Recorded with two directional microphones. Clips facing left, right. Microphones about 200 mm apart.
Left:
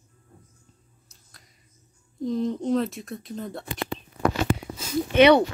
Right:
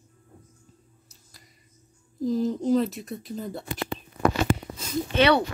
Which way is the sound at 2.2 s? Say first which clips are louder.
Right 1 dB; centre (ahead or behind).